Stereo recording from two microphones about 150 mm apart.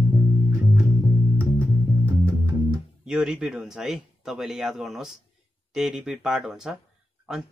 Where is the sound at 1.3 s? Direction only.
10° left (ahead or behind).